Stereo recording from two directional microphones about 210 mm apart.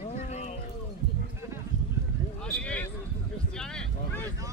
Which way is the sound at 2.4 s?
5° left (ahead or behind).